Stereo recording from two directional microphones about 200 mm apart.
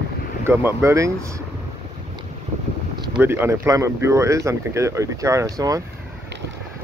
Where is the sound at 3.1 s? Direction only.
10° right (ahead or behind).